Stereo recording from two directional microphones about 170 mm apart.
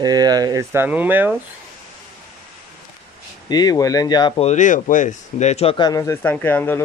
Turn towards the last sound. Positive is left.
turn(degrees=15)  # may be behind; listen again after turning